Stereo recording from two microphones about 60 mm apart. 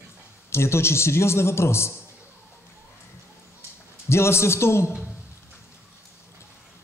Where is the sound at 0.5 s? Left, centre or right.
Left.